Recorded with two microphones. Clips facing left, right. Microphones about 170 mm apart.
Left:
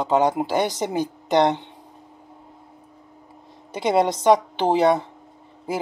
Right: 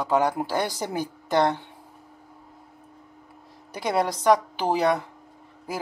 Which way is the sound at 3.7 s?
25° left (ahead or behind).